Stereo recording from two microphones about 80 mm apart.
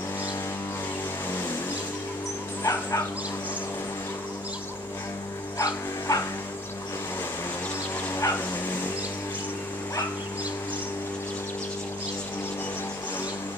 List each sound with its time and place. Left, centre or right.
2.6 s dog: left
5.6 s dog: left
8.1 s dog: left